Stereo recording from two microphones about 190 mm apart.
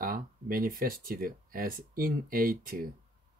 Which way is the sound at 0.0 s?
50° right (ahead or behind).